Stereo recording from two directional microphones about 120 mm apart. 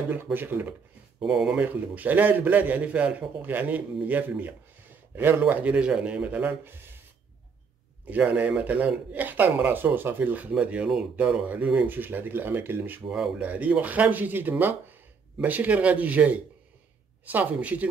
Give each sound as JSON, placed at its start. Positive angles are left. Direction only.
{"t": 0.1, "sound": "speech", "side_deg": -15}
{"t": 1.2, "sound": "speech", "side_deg": -5}
{"t": 8.1, "sound": "speech", "side_deg": -10}